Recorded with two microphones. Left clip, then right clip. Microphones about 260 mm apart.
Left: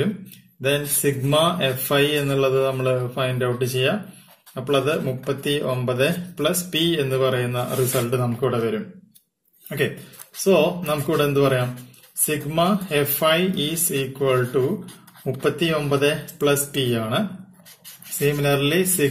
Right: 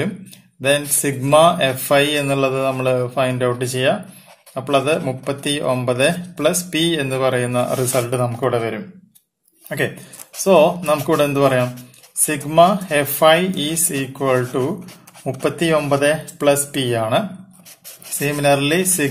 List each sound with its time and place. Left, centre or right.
0.6 s speech: right
10.4 s speech: right
18.2 s speech: right